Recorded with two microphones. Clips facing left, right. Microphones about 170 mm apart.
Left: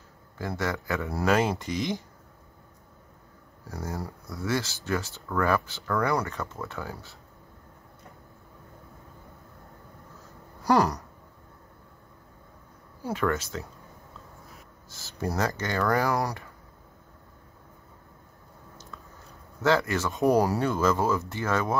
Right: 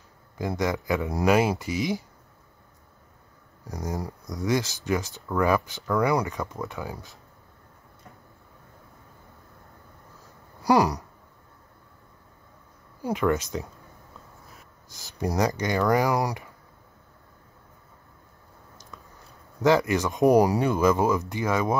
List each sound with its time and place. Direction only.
0.4 s speech: 15° right (ahead or behind)
3.6 s speech: 15° right (ahead or behind)
10.6 s a sound: 10° right (ahead or behind)
13.0 s speech: 15° right (ahead or behind)
14.9 s speech: 15° right (ahead or behind)
19.6 s speech: 15° right (ahead or behind)